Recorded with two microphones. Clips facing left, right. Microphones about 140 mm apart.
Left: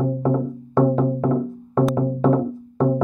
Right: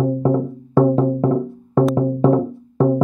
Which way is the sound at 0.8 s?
30° right (ahead or behind).